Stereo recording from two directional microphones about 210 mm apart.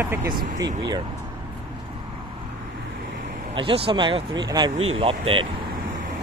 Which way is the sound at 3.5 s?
25° right (ahead or behind).